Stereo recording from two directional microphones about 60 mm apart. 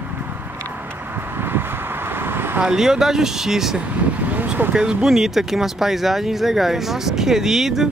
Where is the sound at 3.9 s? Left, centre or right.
Right.